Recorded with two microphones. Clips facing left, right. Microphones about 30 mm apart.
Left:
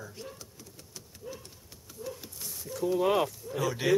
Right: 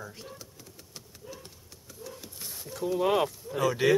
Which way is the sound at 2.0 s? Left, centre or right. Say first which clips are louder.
Left 4 dB; right.